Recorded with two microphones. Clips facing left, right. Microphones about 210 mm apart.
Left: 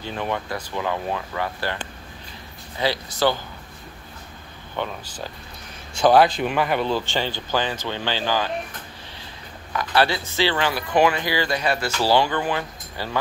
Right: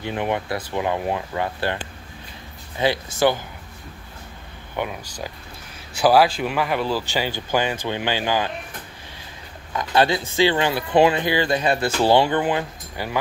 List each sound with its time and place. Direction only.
0.0 s speech: 20° right (ahead or behind)
2.8 s speech: 15° right (ahead or behind)
4.8 s speech: 15° right (ahead or behind)
5.9 s speech: 5° right (ahead or behind)
9.7 s speech: 20° right (ahead or behind)